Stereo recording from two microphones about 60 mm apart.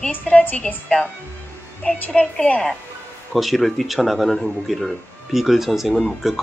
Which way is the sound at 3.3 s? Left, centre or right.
Centre.